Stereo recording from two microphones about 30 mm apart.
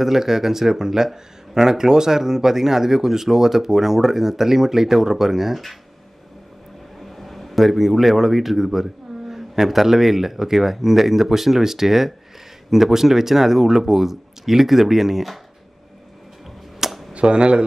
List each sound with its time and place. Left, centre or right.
0.0 s speech: centre
7.0 s speech: centre
17.1 s speech: right